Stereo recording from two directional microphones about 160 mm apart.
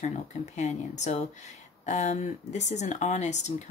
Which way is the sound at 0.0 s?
45° left (ahead or behind).